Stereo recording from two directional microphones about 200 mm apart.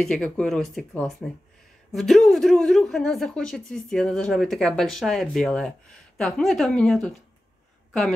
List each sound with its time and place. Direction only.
0.0 s a woman's voice: 5° left (ahead or behind)